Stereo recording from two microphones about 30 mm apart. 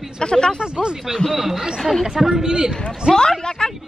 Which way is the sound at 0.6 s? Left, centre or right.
Right.